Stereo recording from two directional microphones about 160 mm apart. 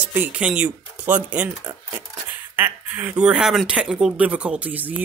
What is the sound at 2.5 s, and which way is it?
Speech, 10° right (ahead or behind).